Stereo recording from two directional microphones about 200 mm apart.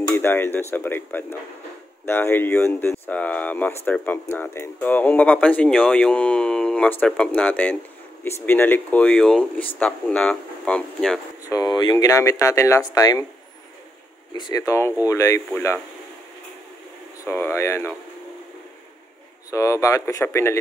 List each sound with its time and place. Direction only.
0.1 s speech: 10° left (ahead or behind)
11.5 s speech: 20° left (ahead or behind)
14.3 s speech: 20° left (ahead or behind)
17.2 s speech: 10° left (ahead or behind)
19.5 s speech: 15° left (ahead or behind)